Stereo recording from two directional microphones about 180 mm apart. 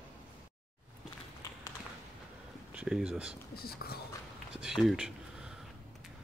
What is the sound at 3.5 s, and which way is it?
Speech, 60° left (ahead or behind).